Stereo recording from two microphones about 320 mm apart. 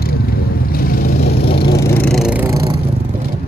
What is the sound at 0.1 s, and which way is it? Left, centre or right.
Vehicle, left.